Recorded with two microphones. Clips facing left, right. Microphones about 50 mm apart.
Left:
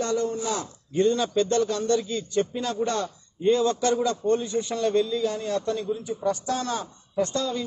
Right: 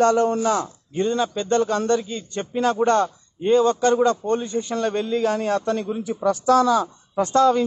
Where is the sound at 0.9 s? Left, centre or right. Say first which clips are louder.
Even; centre.